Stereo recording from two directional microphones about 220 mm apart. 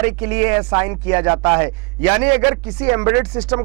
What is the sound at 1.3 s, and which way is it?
Speech, 20° right (ahead or behind).